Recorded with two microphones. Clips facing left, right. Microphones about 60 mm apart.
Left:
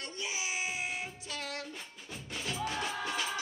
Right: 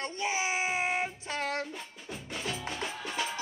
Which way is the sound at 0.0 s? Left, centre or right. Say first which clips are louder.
Right 7 dB; right.